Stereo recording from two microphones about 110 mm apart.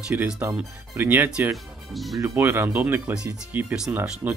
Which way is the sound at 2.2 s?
20° right (ahead or behind).